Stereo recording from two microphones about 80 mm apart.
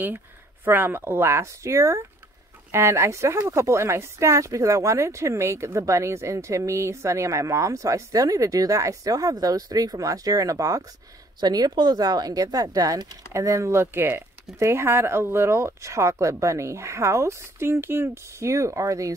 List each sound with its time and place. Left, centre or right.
0.7 s speech: right